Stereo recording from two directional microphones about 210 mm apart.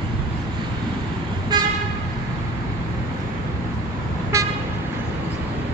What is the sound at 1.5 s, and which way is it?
Vehicle, 20° right (ahead or behind).